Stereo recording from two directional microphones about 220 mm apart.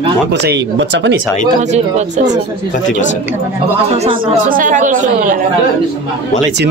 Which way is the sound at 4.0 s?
30° right (ahead or behind).